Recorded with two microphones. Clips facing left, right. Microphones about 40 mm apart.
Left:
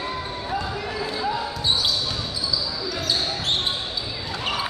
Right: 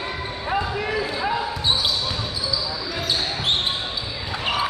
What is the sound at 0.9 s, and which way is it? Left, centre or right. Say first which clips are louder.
Basketball bounce: right 3 dB; right.